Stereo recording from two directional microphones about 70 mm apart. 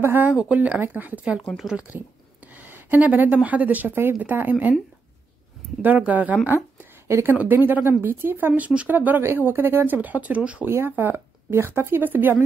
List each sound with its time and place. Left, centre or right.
0.0 s speech: right
0.3 s speech: centre
0.7 s speech: right; by 1.9 s centre
1.9 s a sound: right
3.4 s speech: right
5.8 s speech: right
7.1 s speech: right
7.3 s speech: right
10.9 s speech: right